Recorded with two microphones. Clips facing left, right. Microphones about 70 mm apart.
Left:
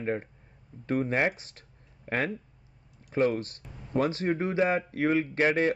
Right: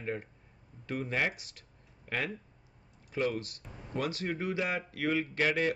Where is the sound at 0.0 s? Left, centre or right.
Left.